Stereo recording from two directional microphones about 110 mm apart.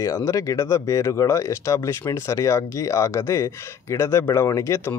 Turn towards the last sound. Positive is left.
turn(degrees=30)  # may be behind; listen again after turning